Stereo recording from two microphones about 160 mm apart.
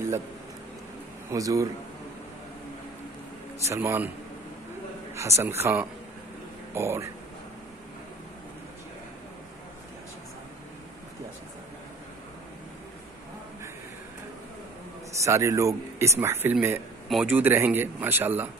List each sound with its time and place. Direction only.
1.3 s a man's voice: 20° right (ahead or behind)
3.6 s speech: 15° right (ahead or behind)
5.1 s speech: 20° right (ahead or behind)
15.2 s speech: 20° right (ahead or behind)